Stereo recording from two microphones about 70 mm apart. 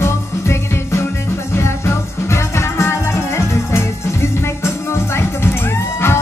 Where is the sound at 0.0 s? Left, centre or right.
Left.